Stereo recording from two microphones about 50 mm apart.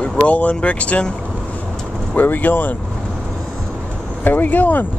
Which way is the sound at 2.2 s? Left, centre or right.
Left.